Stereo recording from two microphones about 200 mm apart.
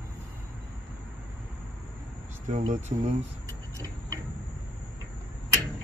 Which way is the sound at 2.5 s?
35° right (ahead or behind).